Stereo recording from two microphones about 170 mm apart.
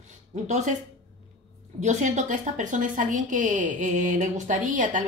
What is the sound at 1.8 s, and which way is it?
A woman's voice, 45° right (ahead or behind).